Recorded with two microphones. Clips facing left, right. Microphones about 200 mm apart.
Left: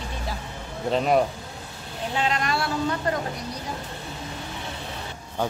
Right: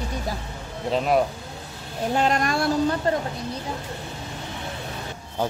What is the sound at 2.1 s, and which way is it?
Speech, 45° right (ahead or behind).